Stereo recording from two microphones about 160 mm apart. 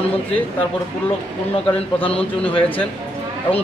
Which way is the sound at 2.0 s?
35° left (ahead or behind).